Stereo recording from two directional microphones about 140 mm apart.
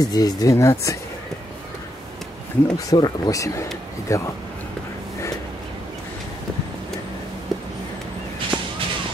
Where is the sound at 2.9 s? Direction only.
25° left (ahead or behind).